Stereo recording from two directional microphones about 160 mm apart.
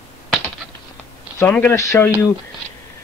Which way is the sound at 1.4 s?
15° left (ahead or behind).